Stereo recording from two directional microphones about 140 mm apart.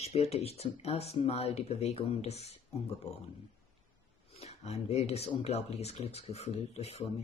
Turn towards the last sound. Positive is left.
turn(degrees=45)  # may be behind; listen again after turning